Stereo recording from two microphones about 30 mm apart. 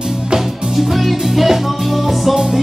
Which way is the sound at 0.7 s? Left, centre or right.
Centre.